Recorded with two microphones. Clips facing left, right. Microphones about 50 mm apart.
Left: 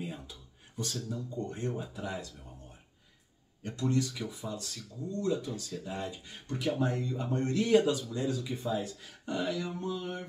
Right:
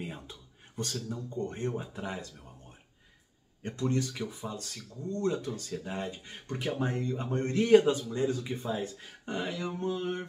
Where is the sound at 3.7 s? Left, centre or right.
Right.